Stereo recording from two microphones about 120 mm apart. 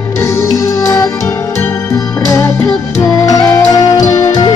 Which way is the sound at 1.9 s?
20° left (ahead or behind).